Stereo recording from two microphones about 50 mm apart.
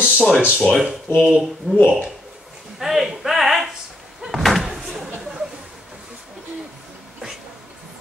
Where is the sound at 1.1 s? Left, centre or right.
Centre.